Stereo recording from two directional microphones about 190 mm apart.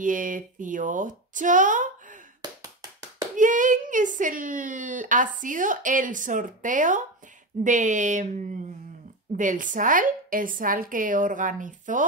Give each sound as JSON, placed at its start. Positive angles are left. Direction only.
{"t": 0.0, "sound": "a woman's voice", "side_deg": -45}
{"t": 2.4, "sound": "tap", "side_deg": -20}
{"t": 3.3, "sound": "a woman's voice", "side_deg": -40}
{"t": 9.4, "sound": "a woman's voice", "side_deg": -45}